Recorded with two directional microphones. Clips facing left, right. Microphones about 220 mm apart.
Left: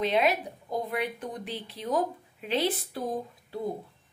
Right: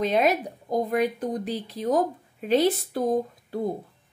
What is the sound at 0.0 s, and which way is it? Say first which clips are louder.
A woman's voice: right 3 dB; 45° right (ahead or behind).